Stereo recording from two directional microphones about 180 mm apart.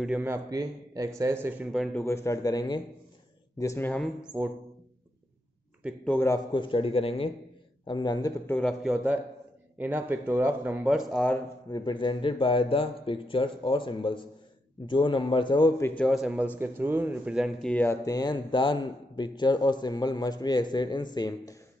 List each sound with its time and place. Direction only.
0.0 s a man's voice: 10° right (ahead or behind)
2.0 s speech: 15° left (ahead or behind)
4.2 s a man's voice: 5° right (ahead or behind)
6.0 s speech: 15° left (ahead or behind)
6.5 s a man's voice: 30° left (ahead or behind)
8.5 s speech: 5° left (ahead or behind)
8.8 s a man's voice: 5° right (ahead or behind)
11.7 s speech: 25° left (ahead or behind)
16.0 s speech: centre (ahead or behind); by 21.5 s 20° left (ahead or behind)